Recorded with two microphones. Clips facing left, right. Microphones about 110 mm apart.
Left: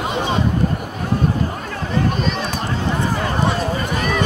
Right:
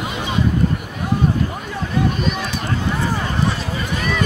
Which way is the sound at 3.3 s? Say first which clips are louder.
Left 3 dB; 45° left (ahead or behind).